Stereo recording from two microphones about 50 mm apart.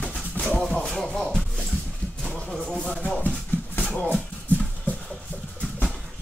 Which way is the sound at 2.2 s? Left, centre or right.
Centre.